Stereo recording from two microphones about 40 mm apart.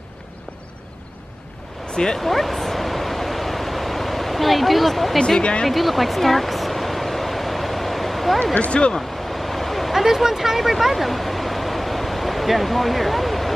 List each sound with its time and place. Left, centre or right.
2.2 s a sound: centre
5.4 s speech: left
5.7 s a sound: centre
8.5 s speech: left
9.4 s vehicle: centre
10.0 s speech: centre